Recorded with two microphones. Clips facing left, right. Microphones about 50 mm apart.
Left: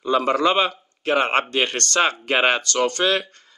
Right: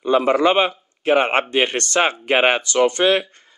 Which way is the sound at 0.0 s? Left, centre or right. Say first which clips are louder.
Right 3 dB; centre.